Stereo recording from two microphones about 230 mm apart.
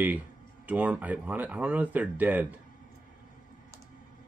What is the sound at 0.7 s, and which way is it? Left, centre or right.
Speech, centre.